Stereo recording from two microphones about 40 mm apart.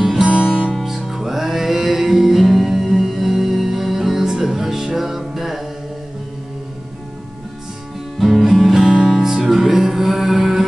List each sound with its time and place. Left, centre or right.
0.2 s music: right
0.7 s music: centre
8.2 s music: centre